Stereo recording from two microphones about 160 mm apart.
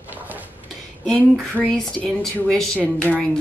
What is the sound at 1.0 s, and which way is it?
A woman's voice, 5° left (ahead or behind).